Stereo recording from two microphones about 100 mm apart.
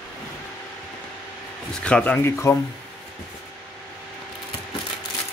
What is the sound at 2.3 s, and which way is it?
Speech, 25° left (ahead or behind).